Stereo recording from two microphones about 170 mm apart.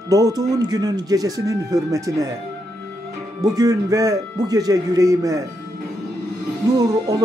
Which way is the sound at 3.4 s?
20° right (ahead or behind).